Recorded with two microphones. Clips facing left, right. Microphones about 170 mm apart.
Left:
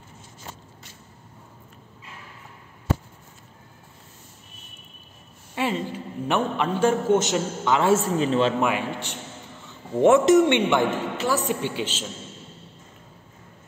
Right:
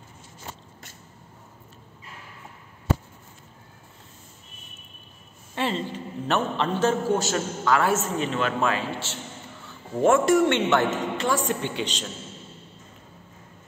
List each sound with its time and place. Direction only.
5.5 s a man's voice: 10° left (ahead or behind); by 8.5 s 30° left (ahead or behind)
8.5 s a man's voice: 15° left (ahead or behind)